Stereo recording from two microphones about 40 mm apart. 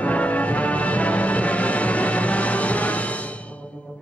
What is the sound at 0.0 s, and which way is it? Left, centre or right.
Music, left.